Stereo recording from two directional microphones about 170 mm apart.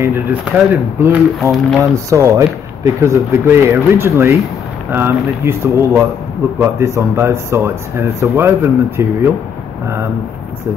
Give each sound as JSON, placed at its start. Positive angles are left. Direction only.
{"t": 0.0, "sound": "speech", "side_deg": -10}
{"t": 1.8, "sound": "speech", "side_deg": -15}